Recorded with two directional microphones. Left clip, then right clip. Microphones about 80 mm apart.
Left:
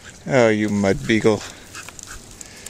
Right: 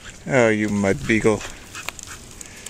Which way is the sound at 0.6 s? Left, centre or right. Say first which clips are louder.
Left 1 dB; centre.